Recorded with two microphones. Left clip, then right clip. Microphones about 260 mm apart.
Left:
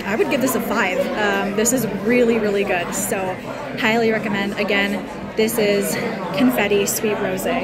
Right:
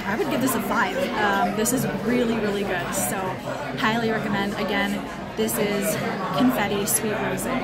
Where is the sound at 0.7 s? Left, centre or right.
Right.